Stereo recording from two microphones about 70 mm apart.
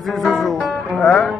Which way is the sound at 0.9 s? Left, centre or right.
Centre.